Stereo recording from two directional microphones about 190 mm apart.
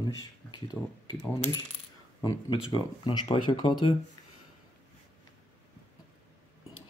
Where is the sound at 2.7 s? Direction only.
25° left (ahead or behind).